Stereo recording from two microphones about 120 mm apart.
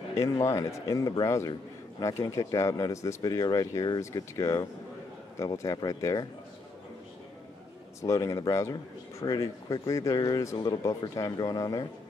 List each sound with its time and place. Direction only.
0.1 s speech: 25° left (ahead or behind)
8.0 s speech: 25° left (ahead or behind)